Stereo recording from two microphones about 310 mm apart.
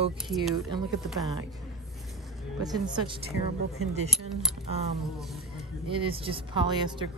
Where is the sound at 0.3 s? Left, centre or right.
Centre.